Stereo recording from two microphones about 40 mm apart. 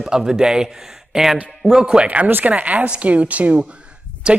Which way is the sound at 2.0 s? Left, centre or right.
Right.